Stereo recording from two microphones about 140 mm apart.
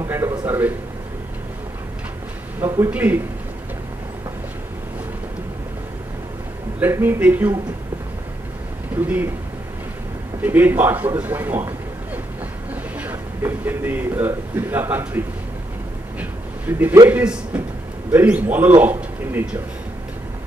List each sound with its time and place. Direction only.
0.0 s a sound: 20° right (ahead or behind)
2.6 s a man's voice: 20° right (ahead or behind)
6.8 s a man's voice: 15° right (ahead or behind)
8.9 s a man's voice: 10° right (ahead or behind)
10.4 s a man's voice: 15° right (ahead or behind)
16.2 s a sound: 15° right (ahead or behind)
17.1 s a man's voice: 10° right (ahead or behind)